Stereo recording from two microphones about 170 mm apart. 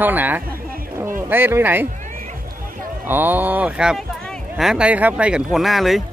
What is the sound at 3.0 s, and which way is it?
Speech, 10° right (ahead or behind).